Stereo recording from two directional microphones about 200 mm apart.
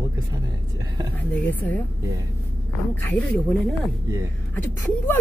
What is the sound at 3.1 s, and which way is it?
Speech, 5° left (ahead or behind).